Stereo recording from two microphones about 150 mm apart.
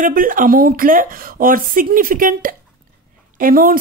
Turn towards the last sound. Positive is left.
turn(degrees=-70)  # may be behind; listen again after turning